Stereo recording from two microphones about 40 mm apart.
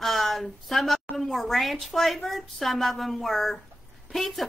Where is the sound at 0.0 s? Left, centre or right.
Centre.